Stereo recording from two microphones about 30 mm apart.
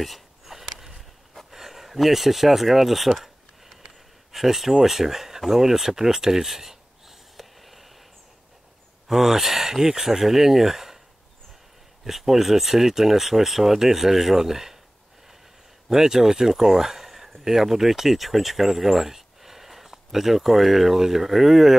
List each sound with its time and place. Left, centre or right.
0.0 s a sound: centre
4.3 s speech: centre
5.5 s a sound: centre
9.0 s speech: centre
12.0 s speech: centre
15.9 s speech: centre